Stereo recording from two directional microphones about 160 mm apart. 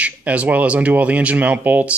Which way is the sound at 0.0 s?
10° right (ahead or behind).